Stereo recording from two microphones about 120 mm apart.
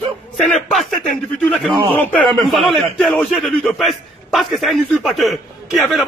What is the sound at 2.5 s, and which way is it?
A man's voice, centre (ahead or behind).